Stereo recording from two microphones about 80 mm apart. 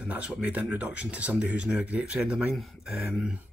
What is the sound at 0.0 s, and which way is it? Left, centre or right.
Speech, centre.